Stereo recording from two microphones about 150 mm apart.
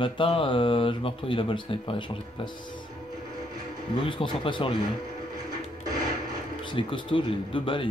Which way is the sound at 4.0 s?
35° left (ahead or behind).